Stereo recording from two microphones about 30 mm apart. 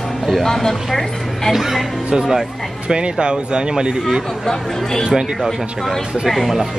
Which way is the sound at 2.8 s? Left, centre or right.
Right.